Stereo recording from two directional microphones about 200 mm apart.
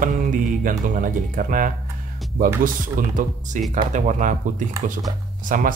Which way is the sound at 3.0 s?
40° right (ahead or behind).